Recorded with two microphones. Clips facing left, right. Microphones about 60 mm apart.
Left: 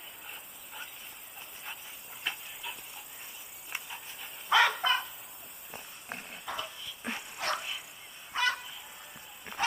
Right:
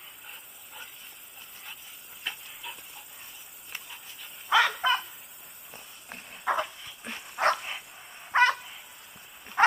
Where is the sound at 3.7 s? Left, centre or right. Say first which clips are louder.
Left 2 dB; centre.